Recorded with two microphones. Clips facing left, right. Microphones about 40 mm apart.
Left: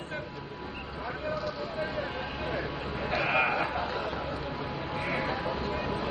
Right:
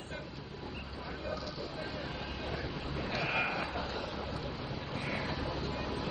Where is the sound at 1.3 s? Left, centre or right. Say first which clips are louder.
Left 6 dB; left.